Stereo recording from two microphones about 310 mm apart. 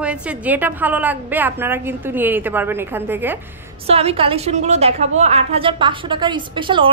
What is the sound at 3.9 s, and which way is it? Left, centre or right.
A woman's voice, centre.